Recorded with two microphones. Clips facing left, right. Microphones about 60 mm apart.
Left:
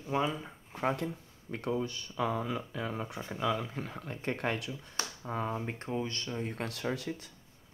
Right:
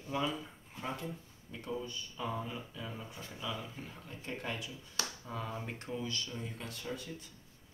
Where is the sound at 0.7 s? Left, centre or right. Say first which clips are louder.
Left 8 dB; left.